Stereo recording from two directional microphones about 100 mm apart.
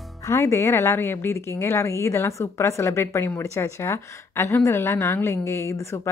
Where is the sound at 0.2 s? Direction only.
25° left (ahead or behind).